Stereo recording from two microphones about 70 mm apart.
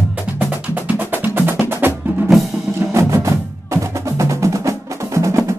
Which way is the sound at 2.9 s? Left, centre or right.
Right.